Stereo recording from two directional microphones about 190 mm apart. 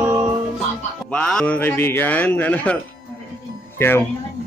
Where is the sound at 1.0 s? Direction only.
5° left (ahead or behind).